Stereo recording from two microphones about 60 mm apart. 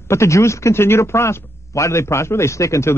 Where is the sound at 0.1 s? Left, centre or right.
Left.